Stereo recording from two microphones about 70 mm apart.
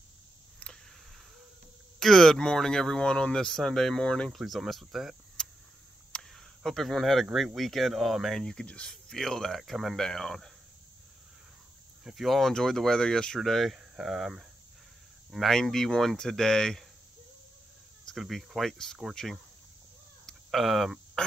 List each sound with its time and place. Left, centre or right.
2.0 s speech: centre
4.3 s speech: centre
5.4 s a sound: centre
7.5 s speech: centre
9.1 s speech: centre
12.0 s speech: centre
13.7 s speech: centre
15.3 s speech: centre
18.0 s speech: centre
20.2 s a sound: centre